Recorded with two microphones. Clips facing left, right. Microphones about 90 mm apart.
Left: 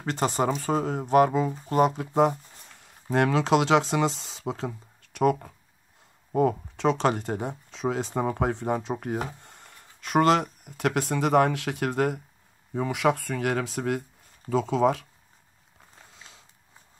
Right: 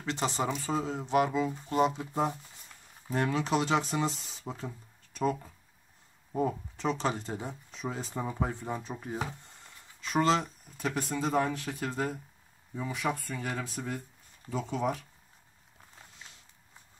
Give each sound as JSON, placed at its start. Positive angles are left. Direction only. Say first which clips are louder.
{"t": 0.0, "sound": "speech", "louder": "left 6 dB", "side_deg": 45}
{"t": 3.1, "sound": "speech", "louder": "left 7 dB", "side_deg": 90}
{"t": 12.7, "sound": "speech", "louder": "left 8 dB", "side_deg": 80}